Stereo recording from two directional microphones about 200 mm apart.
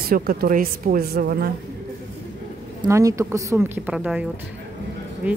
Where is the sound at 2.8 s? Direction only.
15° right (ahead or behind).